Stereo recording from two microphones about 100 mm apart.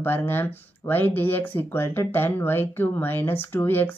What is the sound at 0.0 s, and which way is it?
Speech, 20° left (ahead or behind).